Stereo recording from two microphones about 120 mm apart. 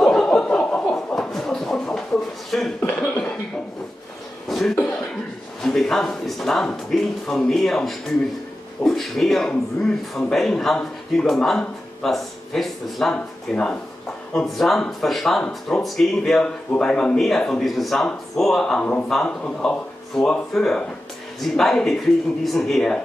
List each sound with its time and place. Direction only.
0.0 s chuckle: 5° left (ahead or behind)
2.5 s a sound: centre (ahead or behind)
4.5 s cough: centre (ahead or behind)
5.6 s speech: 5° left (ahead or behind)